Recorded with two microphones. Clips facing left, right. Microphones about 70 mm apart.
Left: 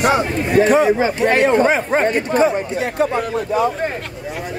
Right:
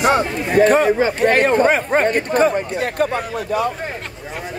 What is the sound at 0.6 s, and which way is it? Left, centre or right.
Speech, right.